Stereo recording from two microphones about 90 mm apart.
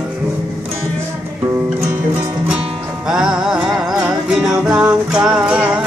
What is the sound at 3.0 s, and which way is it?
Music, 5° right (ahead or behind).